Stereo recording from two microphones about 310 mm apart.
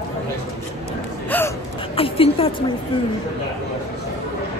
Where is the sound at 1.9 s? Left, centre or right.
Centre.